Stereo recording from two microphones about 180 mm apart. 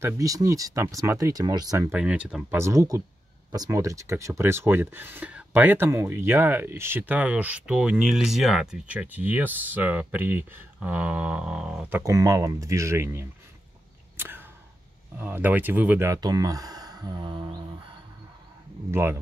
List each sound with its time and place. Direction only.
0.0 s speech: 20° right (ahead or behind)
14.1 s a sound: 10° right (ahead or behind)
15.1 s speech: 10° right (ahead or behind); by 17.5 s 25° right (ahead or behind)
18.9 s speech: 15° right (ahead or behind)